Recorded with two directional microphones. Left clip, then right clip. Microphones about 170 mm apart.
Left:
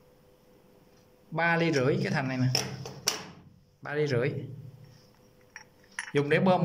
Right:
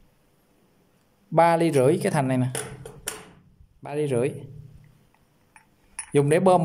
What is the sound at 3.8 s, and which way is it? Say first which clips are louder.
Speech: right 4 dB; 20° right (ahead or behind).